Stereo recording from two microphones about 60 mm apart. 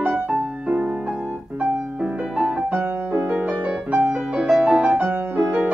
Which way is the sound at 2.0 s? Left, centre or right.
Centre.